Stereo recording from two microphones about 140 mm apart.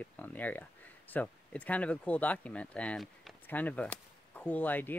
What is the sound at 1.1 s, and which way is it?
Speech, 10° left (ahead or behind).